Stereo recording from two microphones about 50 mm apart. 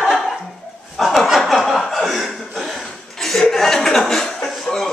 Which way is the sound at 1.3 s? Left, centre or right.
Centre.